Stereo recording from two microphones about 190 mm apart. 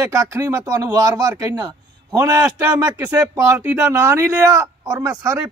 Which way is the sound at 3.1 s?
15° right (ahead or behind).